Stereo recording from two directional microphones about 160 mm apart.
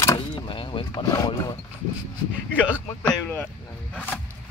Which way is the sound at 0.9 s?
25° left (ahead or behind).